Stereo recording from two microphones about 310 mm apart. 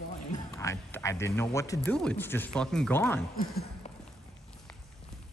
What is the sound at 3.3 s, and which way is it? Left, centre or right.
Speech, left.